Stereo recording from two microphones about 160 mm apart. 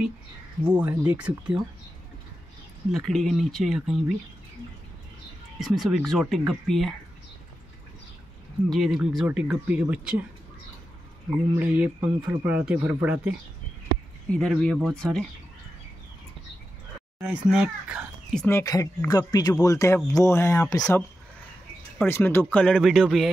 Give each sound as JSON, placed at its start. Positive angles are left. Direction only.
{"t": 0.7, "sound": "speech", "side_deg": -10}
{"t": 2.9, "sound": "speech", "side_deg": 0}
{"t": 5.6, "sound": "speech", "side_deg": 0}
{"t": 8.6, "sound": "speech", "side_deg": 0}
{"t": 11.2, "sound": "speech", "side_deg": -10}
{"t": 14.3, "sound": "speech", "side_deg": 5}
{"t": 17.2, "sound": "speech", "side_deg": -5}
{"t": 18.5, "sound": "speech", "side_deg": 20}
{"t": 21.9, "sound": "speech", "side_deg": 10}